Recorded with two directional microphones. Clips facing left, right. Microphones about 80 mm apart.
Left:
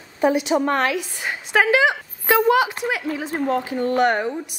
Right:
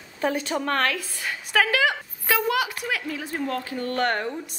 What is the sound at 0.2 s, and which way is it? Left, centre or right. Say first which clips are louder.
A woman's voice: left 7 dB; centre.